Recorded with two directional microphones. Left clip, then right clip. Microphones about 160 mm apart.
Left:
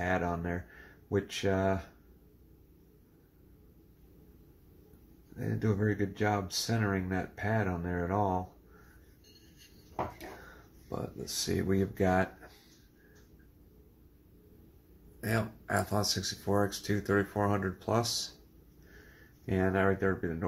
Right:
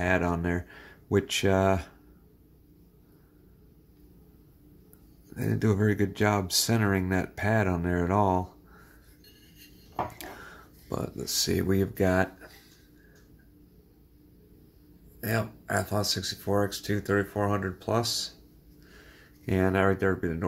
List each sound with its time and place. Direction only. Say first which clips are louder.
0.0 s speech: right 5 dB; 45° right (ahead or behind)
5.3 s speech: right 6 dB; 55° right (ahead or behind)
10.9 s speech: right 6 dB; 40° right (ahead or behind)
15.1 s speech: right 3 dB; 10° right (ahead or behind)
19.4 s speech: right 4 dB; 35° right (ahead or behind)